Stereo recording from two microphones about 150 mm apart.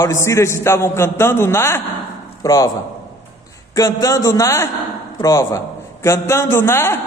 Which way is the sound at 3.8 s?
25° left (ahead or behind).